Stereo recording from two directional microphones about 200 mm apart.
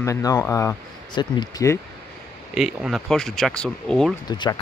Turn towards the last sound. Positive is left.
turn(degrees=20)  # may be behind; listen again after turning